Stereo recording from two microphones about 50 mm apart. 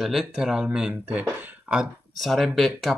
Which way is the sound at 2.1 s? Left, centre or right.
Centre.